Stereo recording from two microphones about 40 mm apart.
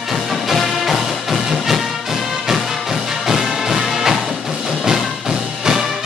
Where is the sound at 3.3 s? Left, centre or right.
Centre.